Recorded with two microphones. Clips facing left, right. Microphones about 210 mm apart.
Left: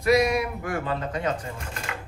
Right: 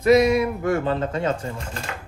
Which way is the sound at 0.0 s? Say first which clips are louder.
Right 5 dB; 25° right (ahead or behind).